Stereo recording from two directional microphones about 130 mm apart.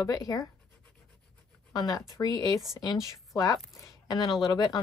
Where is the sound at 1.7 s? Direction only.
30° left (ahead or behind).